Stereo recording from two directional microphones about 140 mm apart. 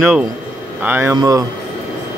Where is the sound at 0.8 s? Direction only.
15° right (ahead or behind).